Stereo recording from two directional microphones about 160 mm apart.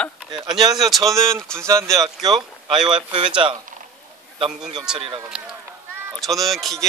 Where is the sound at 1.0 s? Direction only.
20° right (ahead or behind).